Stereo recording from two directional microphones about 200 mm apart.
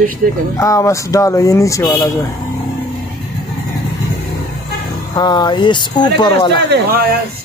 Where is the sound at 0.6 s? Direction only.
15° left (ahead or behind).